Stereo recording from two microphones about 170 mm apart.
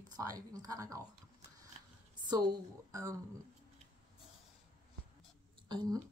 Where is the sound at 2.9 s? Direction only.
20° right (ahead or behind).